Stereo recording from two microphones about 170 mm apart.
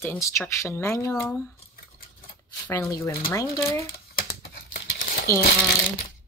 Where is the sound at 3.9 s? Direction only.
60° left (ahead or behind).